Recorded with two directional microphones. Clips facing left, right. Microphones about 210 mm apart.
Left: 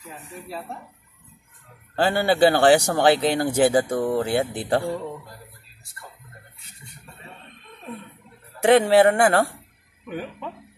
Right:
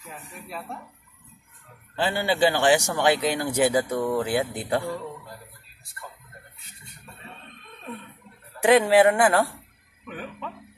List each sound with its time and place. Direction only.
2.0 s speech: 45° left (ahead or behind)
3.0 s speech: 30° left (ahead or behind)
8.6 s speech: 30° left (ahead or behind)